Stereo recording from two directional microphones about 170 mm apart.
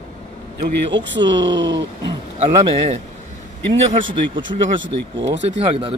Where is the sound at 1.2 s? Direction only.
25° right (ahead or behind).